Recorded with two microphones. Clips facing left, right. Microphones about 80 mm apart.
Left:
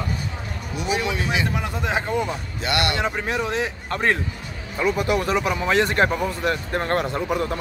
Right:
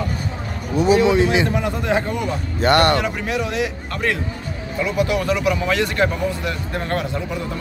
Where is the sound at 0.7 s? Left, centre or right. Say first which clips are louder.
Right 10 dB; right.